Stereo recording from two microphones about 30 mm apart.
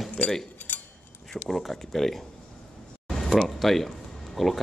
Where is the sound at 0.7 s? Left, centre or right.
Left.